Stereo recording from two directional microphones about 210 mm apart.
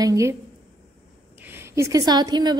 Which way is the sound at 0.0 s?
15° right (ahead or behind).